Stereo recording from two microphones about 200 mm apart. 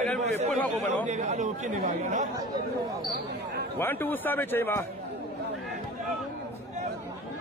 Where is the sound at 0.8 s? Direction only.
35° right (ahead or behind).